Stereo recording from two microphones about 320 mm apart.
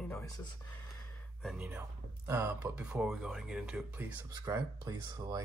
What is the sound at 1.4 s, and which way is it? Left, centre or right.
Speech, centre.